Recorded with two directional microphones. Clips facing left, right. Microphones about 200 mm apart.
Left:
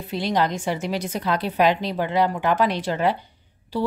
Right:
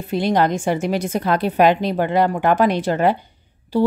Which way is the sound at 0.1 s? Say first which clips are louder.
Right 5 dB; 50° right (ahead or behind).